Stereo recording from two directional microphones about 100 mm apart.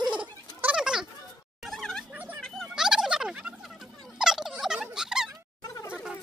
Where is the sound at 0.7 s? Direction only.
5° right (ahead or behind).